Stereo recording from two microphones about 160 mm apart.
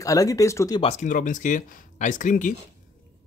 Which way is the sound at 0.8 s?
45° left (ahead or behind).